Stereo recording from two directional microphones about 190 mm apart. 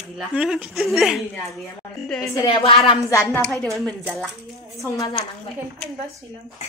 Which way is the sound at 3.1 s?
15° left (ahead or behind).